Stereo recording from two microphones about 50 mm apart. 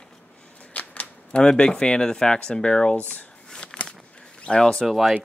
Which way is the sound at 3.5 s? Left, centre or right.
Centre.